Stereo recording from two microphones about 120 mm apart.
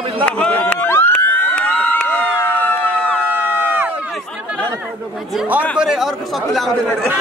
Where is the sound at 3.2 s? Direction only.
15° right (ahead or behind).